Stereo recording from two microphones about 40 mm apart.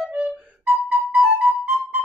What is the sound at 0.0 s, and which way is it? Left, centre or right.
Music, right.